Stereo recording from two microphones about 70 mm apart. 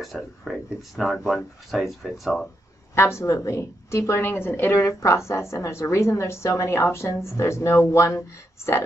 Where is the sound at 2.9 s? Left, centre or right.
Left.